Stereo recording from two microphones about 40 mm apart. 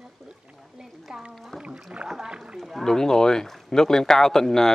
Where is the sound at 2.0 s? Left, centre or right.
Centre.